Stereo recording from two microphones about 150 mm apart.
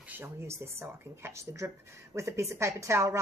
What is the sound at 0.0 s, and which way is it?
Speech, 15° right (ahead or behind).